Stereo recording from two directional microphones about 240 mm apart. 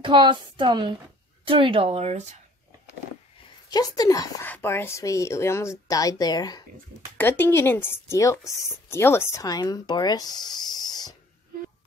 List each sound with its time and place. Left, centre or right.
0.0 s a woman's voice: centre
3.7 s a woman's voice: centre